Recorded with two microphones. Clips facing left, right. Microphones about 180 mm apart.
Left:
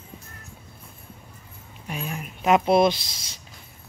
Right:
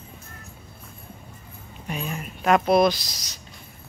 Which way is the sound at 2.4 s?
20° left (ahead or behind).